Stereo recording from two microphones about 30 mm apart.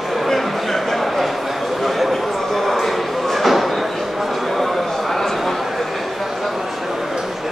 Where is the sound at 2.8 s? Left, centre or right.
Centre.